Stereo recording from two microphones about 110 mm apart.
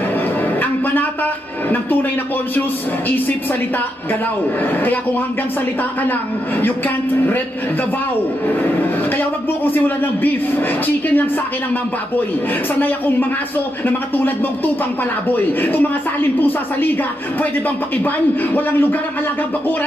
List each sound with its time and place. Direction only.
6.0 s speech: 15° left (ahead or behind)
9.7 s speech: 15° left (ahead or behind)
13.8 s speech: 15° left (ahead or behind)